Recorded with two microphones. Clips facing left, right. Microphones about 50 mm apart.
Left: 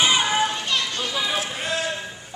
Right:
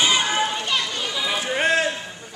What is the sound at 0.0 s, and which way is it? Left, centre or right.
Children playing, centre.